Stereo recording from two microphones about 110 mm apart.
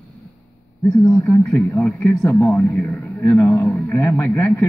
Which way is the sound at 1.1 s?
20° left (ahead or behind).